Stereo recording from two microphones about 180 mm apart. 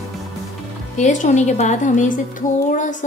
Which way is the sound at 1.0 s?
45° left (ahead or behind).